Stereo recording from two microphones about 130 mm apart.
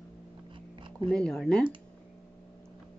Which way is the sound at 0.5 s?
40° right (ahead or behind).